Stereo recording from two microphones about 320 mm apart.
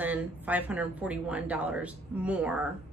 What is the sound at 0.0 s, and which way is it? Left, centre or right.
Speech, centre.